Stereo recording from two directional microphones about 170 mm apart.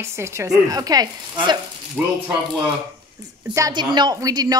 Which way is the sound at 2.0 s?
10° right (ahead or behind).